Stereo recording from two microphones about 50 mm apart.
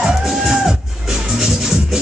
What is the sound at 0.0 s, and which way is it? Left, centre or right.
Music, centre.